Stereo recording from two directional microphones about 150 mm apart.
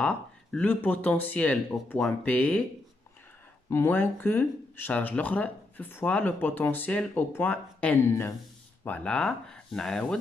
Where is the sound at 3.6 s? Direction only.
15° left (ahead or behind).